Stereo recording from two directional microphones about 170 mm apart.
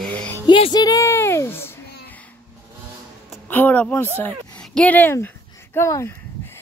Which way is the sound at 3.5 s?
10° left (ahead or behind).